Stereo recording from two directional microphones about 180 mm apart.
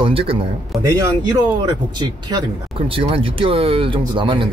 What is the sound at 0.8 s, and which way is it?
Speech, 15° right (ahead or behind).